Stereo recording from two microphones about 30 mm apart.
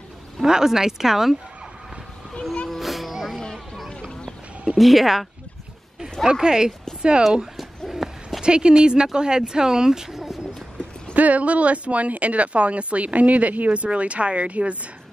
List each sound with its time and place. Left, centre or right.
0.4 s speech: centre
2.8 s music: centre
3.5 s a sound: centre
4.7 s speech: centre
6.4 s speech: right
7.9 s a sound: centre
8.4 s speech: right; by 10.4 s centre
11.1 s speech: right